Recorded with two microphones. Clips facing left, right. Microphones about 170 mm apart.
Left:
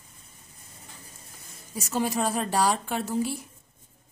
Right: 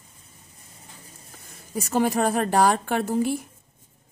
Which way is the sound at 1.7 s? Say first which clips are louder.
Right 5 dB; 55° right (ahead or behind).